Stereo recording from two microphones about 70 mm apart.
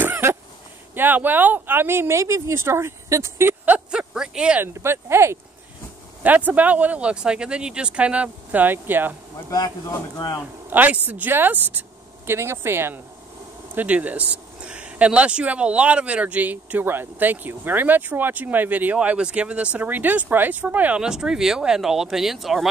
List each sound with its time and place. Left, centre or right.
0.0 s a sound: right
0.9 s speech: right
3.6 s a sound: right
4.1 s speech: centre
4.7 s speech: right
6.2 s speech: right
9.5 s speech: left
10.7 s a woman's voice: right
13.7 s speech: right
21.0 s speech: centre